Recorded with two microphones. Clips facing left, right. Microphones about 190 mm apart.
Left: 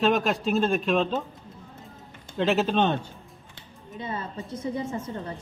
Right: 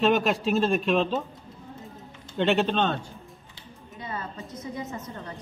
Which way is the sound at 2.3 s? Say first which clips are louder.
Even; centre (ahead or behind).